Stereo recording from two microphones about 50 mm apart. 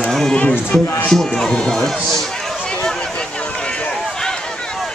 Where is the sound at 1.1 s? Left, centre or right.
Centre.